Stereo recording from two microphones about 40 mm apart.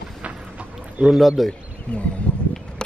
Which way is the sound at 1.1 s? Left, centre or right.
Centre.